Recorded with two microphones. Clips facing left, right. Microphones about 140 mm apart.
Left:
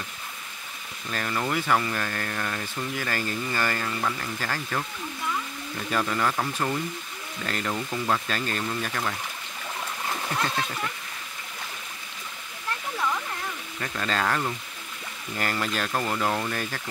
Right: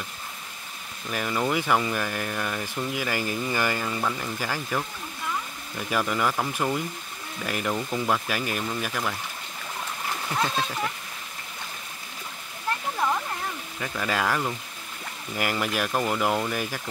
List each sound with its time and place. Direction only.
1.1 s speech: 15° right (ahead or behind)
13.7 s speech: 10° right (ahead or behind)